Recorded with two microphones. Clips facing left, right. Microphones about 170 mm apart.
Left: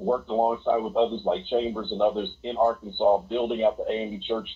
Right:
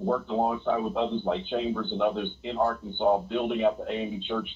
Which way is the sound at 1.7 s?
20° left (ahead or behind).